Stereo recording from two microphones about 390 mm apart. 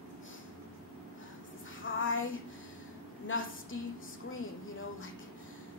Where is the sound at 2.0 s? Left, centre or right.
Left.